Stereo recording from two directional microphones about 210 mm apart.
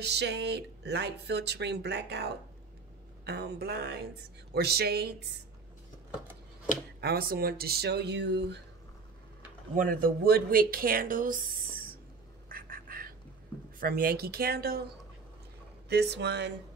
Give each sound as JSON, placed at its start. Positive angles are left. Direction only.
{"t": 0.0, "sound": "speech", "side_deg": -50}
{"t": 7.0, "sound": "speech", "side_deg": -45}
{"t": 9.8, "sound": "speech", "side_deg": -40}
{"t": 12.4, "sound": "duck", "side_deg": -40}
{"t": 13.7, "sound": "speech", "side_deg": -45}
{"t": 15.9, "sound": "speech", "side_deg": -50}